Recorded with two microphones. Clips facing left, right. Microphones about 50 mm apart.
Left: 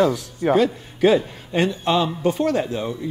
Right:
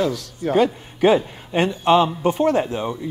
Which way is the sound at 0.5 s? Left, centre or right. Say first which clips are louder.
Right 4 dB; right.